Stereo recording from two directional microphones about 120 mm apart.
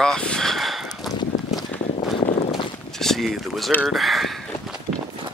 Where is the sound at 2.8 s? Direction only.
5° left (ahead or behind).